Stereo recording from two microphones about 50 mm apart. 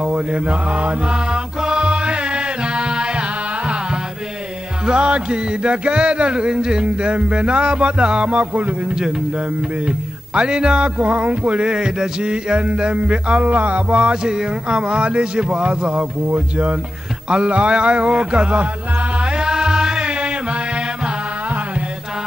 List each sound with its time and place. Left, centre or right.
0.0 s music: right
11.0 s music: right
16.3 s speech: right
17.3 s music: right